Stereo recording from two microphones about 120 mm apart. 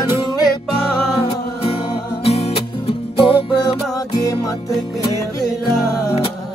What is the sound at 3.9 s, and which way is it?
Music, 30° left (ahead or behind).